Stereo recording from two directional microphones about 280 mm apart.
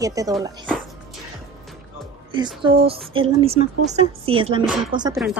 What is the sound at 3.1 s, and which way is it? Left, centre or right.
A woman's voice, centre.